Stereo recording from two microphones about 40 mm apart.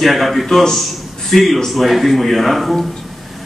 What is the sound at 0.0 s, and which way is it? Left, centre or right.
A man's voice, centre.